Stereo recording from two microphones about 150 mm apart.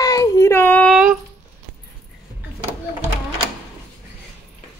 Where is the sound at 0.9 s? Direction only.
5° right (ahead or behind).